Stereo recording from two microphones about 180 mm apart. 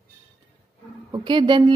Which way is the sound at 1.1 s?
25° right (ahead or behind).